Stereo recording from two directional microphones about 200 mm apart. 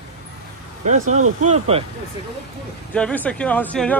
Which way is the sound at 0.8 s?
40° right (ahead or behind).